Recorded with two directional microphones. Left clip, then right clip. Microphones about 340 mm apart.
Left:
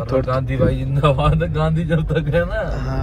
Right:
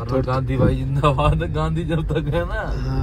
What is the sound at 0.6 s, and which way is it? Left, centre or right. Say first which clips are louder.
A man's voice: left 2 dB; centre.